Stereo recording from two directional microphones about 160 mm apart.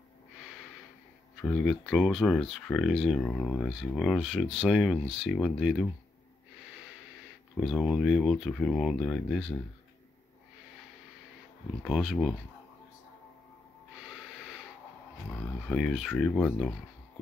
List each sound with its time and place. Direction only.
1.4 s speech: centre (ahead or behind)
7.6 s speech: centre (ahead or behind)
11.8 s speech: centre (ahead or behind)
15.7 s speech: centre (ahead or behind)